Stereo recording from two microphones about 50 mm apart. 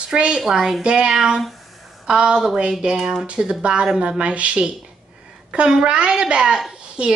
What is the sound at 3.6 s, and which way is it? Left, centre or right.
A woman's voice, right.